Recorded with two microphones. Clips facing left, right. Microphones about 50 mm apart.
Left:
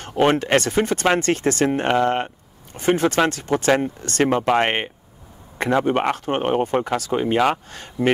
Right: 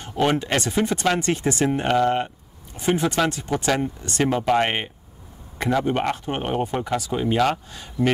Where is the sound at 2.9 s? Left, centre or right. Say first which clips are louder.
Left 3 dB; left.